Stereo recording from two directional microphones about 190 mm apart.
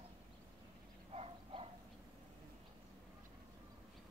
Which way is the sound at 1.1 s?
30° right (ahead or behind).